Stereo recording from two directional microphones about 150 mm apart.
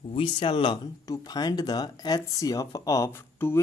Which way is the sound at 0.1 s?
35° left (ahead or behind).